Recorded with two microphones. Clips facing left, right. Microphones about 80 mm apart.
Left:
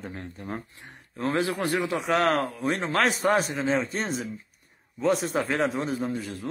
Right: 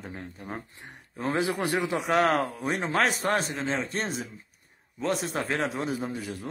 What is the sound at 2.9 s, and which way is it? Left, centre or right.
A man's voice, centre.